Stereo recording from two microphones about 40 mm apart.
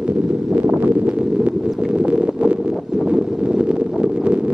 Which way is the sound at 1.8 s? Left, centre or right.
Right.